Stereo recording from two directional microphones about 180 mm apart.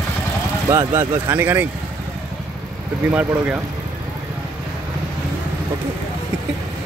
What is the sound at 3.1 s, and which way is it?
Speech, 10° right (ahead or behind).